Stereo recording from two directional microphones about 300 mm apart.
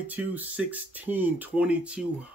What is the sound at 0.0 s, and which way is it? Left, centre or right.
Speech, centre.